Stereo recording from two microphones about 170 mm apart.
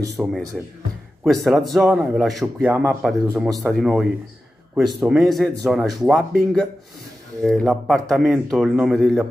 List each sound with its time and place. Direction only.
0.2 s speech: centre (ahead or behind)
2.7 s speech: 15° right (ahead or behind)
3.0 s speech: centre (ahead or behind)